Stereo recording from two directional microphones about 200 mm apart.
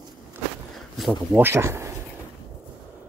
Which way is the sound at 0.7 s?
Centre (ahead or behind).